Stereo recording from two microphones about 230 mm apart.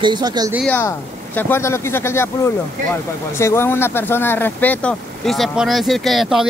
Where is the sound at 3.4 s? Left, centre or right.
Centre.